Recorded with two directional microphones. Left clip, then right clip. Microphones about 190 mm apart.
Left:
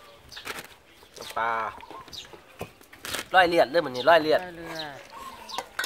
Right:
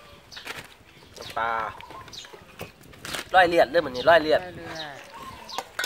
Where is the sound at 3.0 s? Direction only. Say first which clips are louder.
Even; 30° left (ahead or behind).